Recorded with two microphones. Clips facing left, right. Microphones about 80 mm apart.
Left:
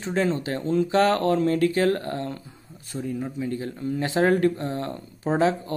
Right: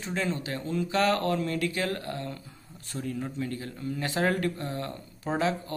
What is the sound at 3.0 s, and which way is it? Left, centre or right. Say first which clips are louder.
Speech: left 4 dB; centre.